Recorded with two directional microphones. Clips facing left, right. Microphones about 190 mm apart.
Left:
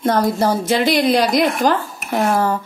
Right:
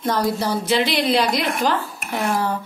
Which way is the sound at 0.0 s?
50° left (ahead or behind).